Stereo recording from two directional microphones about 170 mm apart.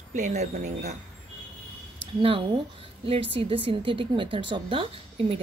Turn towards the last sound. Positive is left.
turn(degrees=-30)  # may be behind; listen again after turning